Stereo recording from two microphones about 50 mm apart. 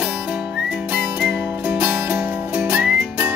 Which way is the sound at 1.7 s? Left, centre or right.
Right.